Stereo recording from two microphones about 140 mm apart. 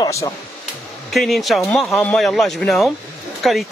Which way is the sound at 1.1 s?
Centre (ahead or behind).